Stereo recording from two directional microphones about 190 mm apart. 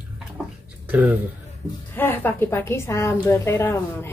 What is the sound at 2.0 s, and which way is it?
A woman's voice, 10° left (ahead or behind).